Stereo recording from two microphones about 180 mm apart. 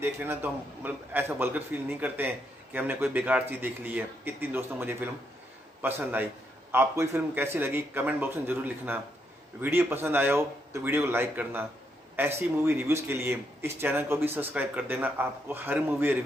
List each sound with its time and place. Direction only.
0.0 s a man's voice: 10° right (ahead or behind)